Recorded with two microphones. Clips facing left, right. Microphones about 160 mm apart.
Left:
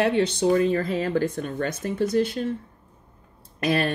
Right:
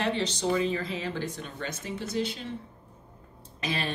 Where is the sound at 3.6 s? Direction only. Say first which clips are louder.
Left 9 dB; 60° left (ahead or behind).